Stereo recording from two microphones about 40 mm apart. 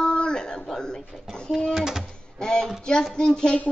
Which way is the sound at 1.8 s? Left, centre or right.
Centre.